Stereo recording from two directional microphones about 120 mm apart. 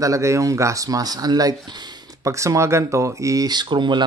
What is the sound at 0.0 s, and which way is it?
Speech, 25° right (ahead or behind).